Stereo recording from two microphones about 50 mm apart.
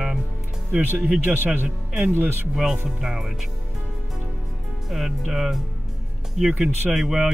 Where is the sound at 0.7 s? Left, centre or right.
Right.